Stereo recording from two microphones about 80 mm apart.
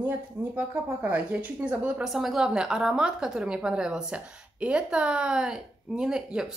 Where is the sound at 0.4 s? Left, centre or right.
Right.